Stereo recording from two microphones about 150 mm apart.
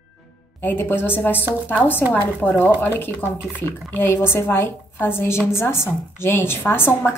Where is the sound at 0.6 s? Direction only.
15° left (ahead or behind).